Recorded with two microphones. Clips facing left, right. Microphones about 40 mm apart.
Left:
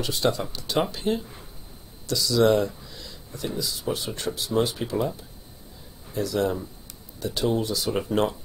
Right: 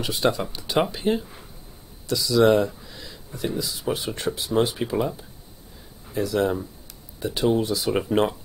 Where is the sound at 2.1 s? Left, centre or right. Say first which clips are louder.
Right 2 dB; centre.